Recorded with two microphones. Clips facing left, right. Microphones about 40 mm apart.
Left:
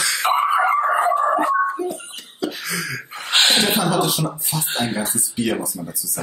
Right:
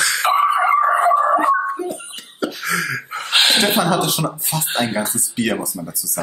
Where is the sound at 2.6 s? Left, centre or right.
Right.